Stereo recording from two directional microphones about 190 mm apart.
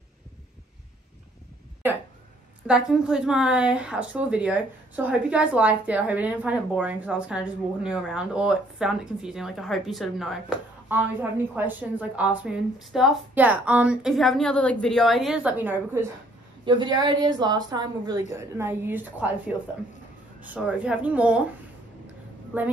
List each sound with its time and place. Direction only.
1.8 s speech: 10° right (ahead or behind)
16.6 s speech: 25° right (ahead or behind); by 21.4 s 5° right (ahead or behind)
22.5 s speech: 10° right (ahead or behind)